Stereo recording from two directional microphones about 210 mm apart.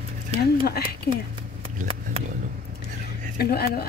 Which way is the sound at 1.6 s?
25° right (ahead or behind).